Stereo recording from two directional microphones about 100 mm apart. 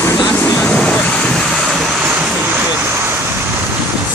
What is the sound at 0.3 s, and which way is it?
Vehicle, 15° left (ahead or behind).